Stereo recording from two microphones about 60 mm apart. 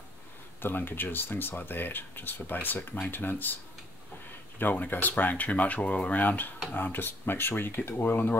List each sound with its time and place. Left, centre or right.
0.6 s speech: left
4.6 s speech: left